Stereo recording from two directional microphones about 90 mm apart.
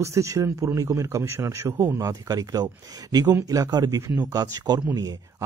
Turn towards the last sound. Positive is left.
turn(degrees=-35)  # may be behind; listen again after turning